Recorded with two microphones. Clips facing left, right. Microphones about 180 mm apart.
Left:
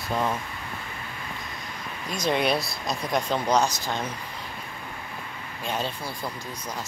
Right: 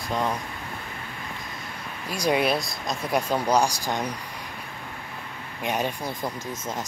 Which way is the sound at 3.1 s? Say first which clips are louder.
Right 1 dB; 10° right (ahead or behind).